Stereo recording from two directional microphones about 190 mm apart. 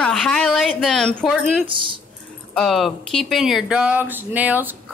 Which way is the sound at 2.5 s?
Centre (ahead or behind).